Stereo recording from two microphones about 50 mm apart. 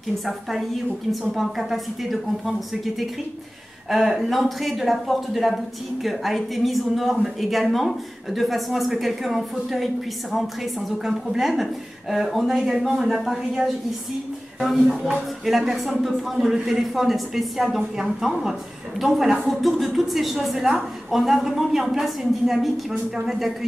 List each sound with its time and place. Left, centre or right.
0.2 s a woman's voice: centre
14.6 s a woman's voice: centre